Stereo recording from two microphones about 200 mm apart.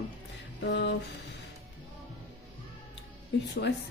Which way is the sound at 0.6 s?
60° left (ahead or behind).